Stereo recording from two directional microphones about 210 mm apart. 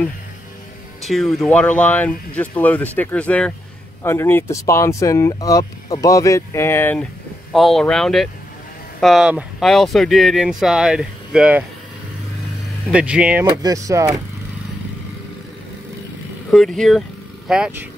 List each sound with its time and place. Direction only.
1.0 s speech: centre (ahead or behind)
12.9 s speech: 5° right (ahead or behind)
13.5 s speech: 20° right (ahead or behind)
16.4 s speech: centre (ahead or behind)